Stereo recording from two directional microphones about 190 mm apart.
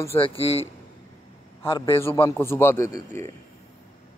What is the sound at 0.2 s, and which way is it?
Speech, 30° left (ahead or behind).